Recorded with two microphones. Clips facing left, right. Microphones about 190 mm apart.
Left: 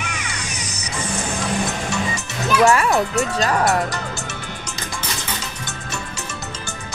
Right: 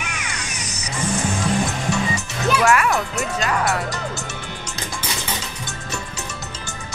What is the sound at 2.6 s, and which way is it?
Speech, 30° left (ahead or behind).